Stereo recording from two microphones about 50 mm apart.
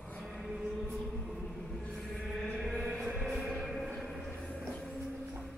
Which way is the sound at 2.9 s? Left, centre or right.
Centre.